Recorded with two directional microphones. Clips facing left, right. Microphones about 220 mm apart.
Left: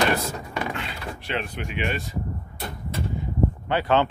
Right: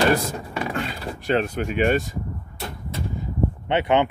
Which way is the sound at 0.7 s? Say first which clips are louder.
Right 5 dB; 45° right (ahead or behind).